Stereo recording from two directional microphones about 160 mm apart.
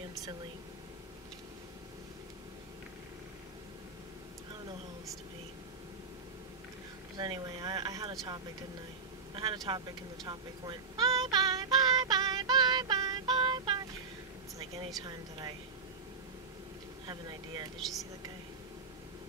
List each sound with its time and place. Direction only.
7.2 s speech: 25° right (ahead or behind)
9.3 s a sound: 30° right (ahead or behind)
15.0 s speech: 25° right (ahead or behind)
17.0 s speech: 25° right (ahead or behind)